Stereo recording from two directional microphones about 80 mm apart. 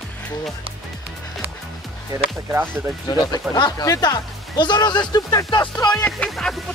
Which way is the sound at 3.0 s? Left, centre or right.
Left.